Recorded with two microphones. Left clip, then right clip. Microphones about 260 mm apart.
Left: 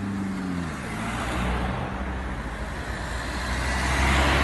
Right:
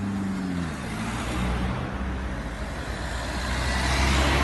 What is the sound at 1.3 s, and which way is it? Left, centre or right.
Vehicle, left.